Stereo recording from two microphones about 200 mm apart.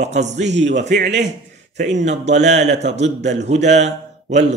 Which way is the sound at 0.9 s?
60° right (ahead or behind).